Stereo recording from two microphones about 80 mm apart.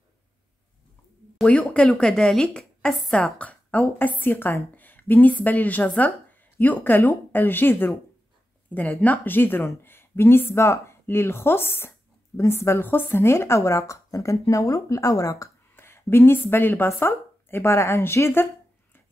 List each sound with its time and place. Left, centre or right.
1.4 s a woman's voice: centre; by 15.5 s left
15.7 s speech: left